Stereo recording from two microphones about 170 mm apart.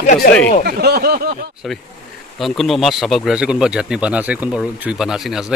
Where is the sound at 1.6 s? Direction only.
Centre (ahead or behind).